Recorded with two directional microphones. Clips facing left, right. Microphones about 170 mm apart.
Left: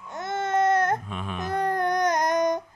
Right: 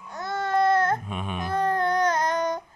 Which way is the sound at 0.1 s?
25° left (ahead or behind).